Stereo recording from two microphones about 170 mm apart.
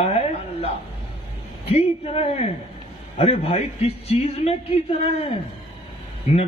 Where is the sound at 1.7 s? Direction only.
35° left (ahead or behind).